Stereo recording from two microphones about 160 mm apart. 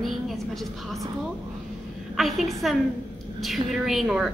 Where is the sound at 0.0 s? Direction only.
Centre (ahead or behind).